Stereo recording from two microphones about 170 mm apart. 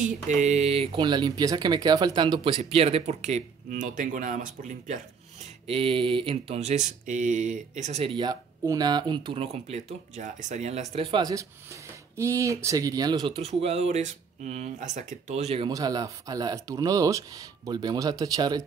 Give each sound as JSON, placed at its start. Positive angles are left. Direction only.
{"t": 0.0, "sound": "speech", "side_deg": -45}
{"t": 5.4, "sound": "speech", "side_deg": -35}
{"t": 13.3, "sound": "speech", "side_deg": -35}
{"t": 15.7, "sound": "speech", "side_deg": -20}